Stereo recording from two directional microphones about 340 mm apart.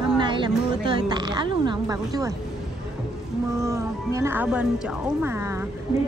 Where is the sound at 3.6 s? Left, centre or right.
Centre.